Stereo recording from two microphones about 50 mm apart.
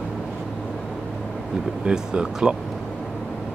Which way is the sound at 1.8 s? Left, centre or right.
Centre.